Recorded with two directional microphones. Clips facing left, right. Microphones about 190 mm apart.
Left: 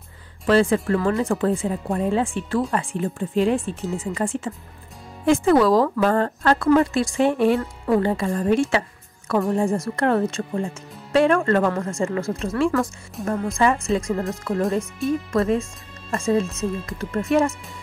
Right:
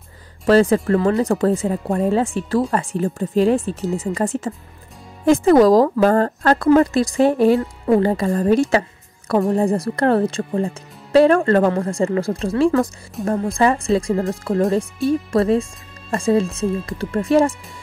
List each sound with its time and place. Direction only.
0.5 s a woman's voice: 40° right (ahead or behind)